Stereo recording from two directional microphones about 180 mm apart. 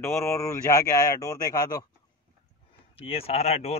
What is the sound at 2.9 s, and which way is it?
Speech, 30° left (ahead or behind).